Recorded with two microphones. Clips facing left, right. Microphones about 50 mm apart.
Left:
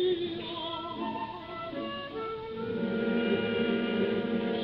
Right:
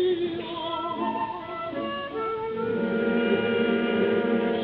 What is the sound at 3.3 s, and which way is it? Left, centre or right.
Gong, centre.